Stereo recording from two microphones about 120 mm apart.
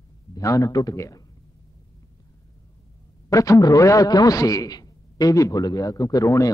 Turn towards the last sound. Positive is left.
turn(degrees=30)  # may be behind; listen again after turning